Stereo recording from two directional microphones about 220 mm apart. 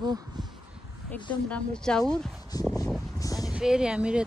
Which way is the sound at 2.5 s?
15° left (ahead or behind).